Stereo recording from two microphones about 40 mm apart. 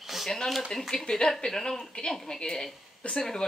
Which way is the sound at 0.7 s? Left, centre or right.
Centre.